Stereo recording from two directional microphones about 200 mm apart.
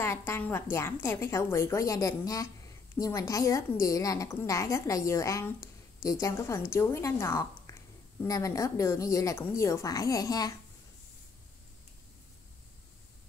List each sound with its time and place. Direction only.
0.0 s a woman's voice: 10° left (ahead or behind)